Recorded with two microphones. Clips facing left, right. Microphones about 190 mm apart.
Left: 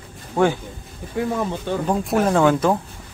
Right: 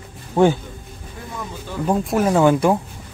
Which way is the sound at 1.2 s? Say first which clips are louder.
Left 15 dB; 75° left (ahead or behind).